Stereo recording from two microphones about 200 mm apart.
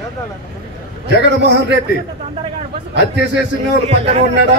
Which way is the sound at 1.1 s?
60° right (ahead or behind).